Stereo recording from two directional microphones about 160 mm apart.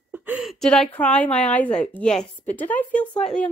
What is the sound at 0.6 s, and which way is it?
Speech, 5° left (ahead or behind).